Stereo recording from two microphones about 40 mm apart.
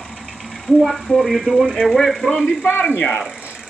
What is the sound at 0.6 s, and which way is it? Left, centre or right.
Speech, centre.